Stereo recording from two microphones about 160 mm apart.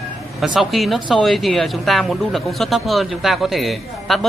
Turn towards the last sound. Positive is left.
turn(degrees=0)  # may be behind; listen again after turning